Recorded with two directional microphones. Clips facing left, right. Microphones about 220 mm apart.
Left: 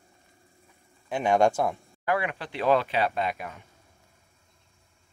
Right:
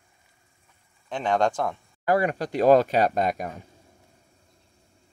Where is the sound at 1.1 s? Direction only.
10° left (ahead or behind).